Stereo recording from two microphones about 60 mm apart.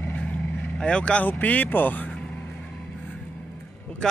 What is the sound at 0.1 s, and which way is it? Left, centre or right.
Vehicle, left.